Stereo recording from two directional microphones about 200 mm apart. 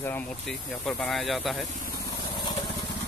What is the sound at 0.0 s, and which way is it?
Speech, 10° left (ahead or behind).